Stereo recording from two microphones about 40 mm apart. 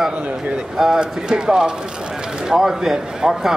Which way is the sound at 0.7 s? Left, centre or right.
Centre.